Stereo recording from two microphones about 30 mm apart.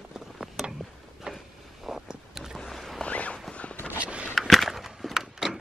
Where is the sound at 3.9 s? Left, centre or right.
Right.